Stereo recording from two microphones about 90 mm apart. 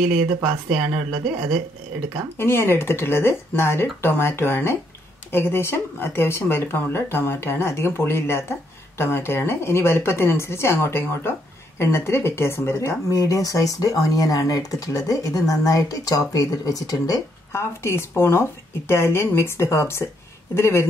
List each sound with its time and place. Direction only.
0.4 s speech: 5° right (ahead or behind)
2.3 s speech: 25° left (ahead or behind); by 17.2 s 45° left (ahead or behind)
17.5 s speech: 30° left (ahead or behind)